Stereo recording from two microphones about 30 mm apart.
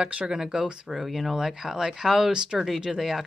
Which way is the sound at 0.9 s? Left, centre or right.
Centre.